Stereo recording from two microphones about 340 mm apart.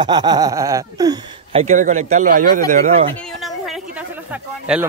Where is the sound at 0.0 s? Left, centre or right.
Centre.